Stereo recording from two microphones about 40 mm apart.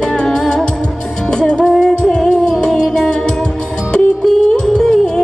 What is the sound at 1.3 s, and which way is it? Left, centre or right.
Music, centre.